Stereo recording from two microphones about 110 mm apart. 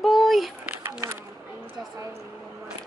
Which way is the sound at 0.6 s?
20° right (ahead or behind).